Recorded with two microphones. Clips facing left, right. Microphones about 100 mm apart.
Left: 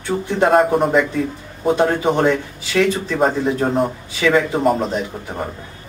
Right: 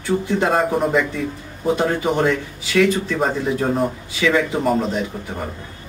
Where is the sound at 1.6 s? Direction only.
30° left (ahead or behind).